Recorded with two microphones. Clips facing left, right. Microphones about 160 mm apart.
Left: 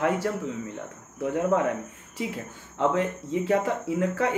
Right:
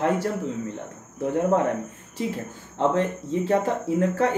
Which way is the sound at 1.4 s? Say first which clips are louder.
Right 2 dB; 30° right (ahead or behind).